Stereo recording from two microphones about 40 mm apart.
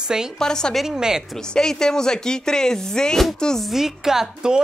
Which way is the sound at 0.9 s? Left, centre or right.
Centre.